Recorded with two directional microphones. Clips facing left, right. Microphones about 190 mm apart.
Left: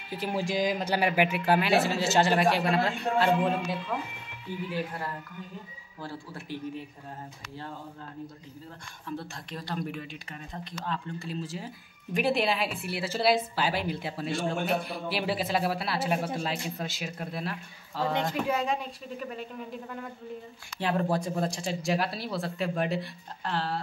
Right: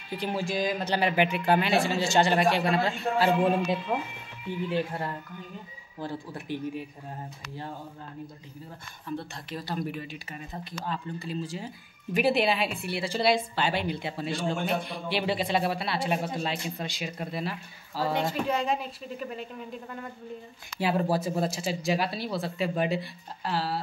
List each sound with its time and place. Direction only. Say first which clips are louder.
0.1 s speech: right 1 dB; 5° left (ahead or behind)
0.4 s speech: left 2 dB; 15° left (ahead or behind); by 3.3 s 5° right (ahead or behind)
3.9 s a woman's voice: right 3 dB; 25° right (ahead or behind)
9.0 s speech: right 2 dB; centre (ahead or behind)
20.8 s speech: right 2 dB; 5° right (ahead or behind)